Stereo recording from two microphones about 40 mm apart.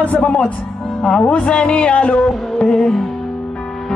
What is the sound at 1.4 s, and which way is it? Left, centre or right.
Speech, left.